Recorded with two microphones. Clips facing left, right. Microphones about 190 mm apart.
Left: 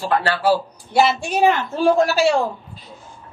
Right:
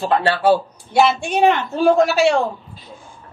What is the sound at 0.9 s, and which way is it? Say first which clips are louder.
A woman's voice: right 1 dB; centre (ahead or behind).